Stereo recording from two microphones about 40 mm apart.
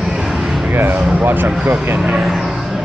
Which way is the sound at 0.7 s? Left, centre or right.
Right.